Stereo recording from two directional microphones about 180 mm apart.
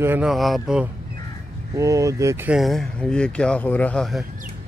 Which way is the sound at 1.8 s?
20° right (ahead or behind).